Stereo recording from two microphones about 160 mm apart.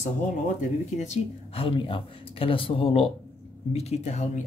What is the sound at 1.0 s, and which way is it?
A woman's voice, 40° left (ahead or behind).